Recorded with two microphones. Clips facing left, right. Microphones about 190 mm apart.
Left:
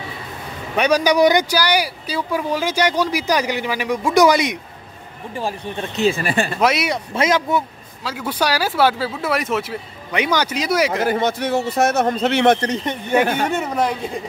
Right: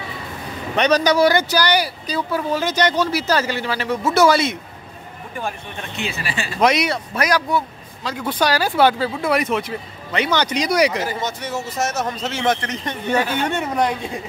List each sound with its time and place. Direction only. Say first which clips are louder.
0.7 s speech: left 1 dB; 10° left (ahead or behind)
5.3 s speech: left 4 dB; 30° left (ahead or behind); by 6.6 s 55° left (ahead or behind)
6.6 s speech: right 3 dB; 5° left (ahead or behind)
7.2 s a man's voice: left 2 dB; 25° left (ahead or behind)
8.0 s speech: right 1 dB; 5° left (ahead or behind)
11.0 s a man's voice: left 6 dB; 60° left (ahead or behind)
12.5 s a man's voice: left 6 dB; 35° left (ahead or behind)
13.5 s speech: even; centre (ahead or behind)